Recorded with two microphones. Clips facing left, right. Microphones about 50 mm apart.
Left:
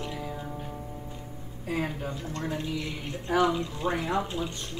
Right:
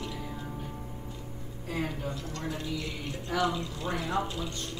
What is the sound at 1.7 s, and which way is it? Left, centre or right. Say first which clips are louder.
Speech: left 3 dB; left.